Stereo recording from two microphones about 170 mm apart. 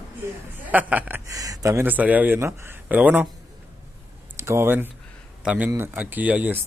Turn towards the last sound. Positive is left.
turn(degrees=-10)  # may be behind; listen again after turning